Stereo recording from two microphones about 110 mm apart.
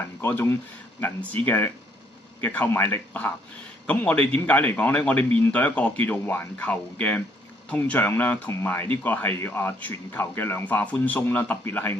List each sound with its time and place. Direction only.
0.2 s speech: 20° left (ahead or behind)